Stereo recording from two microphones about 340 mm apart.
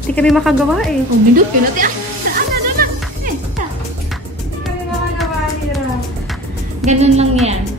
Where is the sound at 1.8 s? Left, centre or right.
Right.